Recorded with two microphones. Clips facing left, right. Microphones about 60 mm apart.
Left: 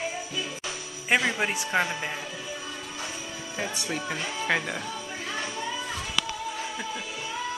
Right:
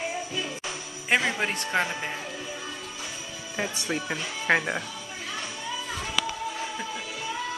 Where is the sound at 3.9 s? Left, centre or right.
Centre.